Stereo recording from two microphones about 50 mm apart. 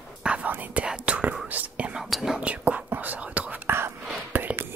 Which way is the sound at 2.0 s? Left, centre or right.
Centre.